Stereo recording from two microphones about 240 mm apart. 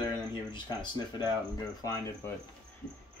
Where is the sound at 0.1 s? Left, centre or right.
Centre.